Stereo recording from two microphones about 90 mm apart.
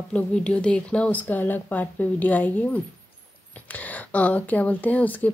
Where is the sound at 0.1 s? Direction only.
10° left (ahead or behind).